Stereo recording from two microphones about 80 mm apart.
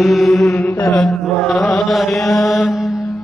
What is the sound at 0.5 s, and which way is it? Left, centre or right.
Mantra, left.